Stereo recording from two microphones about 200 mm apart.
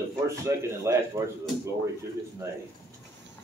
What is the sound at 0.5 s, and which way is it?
Speech, 15° right (ahead or behind).